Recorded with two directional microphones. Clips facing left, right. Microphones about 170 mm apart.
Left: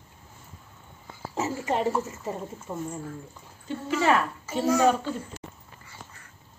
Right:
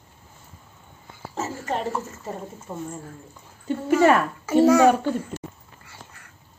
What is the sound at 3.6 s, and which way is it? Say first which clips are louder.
Speech: right 6 dB; 50° right (ahead or behind).